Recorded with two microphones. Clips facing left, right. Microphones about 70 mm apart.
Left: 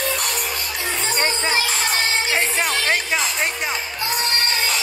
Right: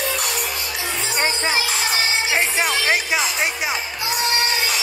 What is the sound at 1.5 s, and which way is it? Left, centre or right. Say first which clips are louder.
Music: even; left.